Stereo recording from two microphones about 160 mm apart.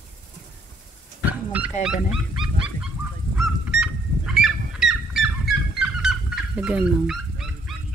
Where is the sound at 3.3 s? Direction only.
5° right (ahead or behind).